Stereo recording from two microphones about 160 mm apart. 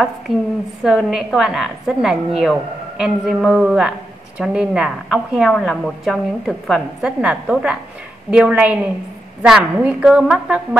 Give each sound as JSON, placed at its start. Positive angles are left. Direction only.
{"t": 0.8, "sound": "a woman's voice", "side_deg": 0}